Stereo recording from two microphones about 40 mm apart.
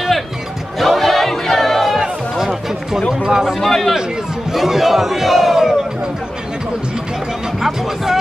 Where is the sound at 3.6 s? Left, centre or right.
Centre.